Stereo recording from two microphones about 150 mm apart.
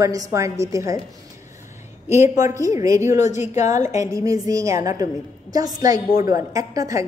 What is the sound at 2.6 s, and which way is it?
Speech, 20° right (ahead or behind).